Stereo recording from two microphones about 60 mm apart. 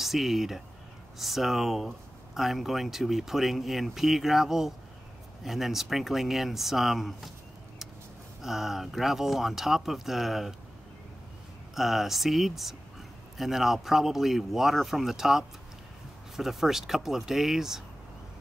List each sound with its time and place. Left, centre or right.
0.0 s speech: centre
8.4 s speech: centre
11.7 s speech: centre